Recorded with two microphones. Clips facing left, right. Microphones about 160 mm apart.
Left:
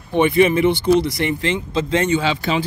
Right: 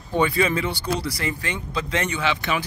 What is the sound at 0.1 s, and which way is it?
Speech, 25° left (ahead or behind).